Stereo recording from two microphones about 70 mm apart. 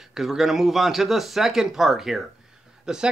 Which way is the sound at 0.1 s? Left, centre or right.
Centre.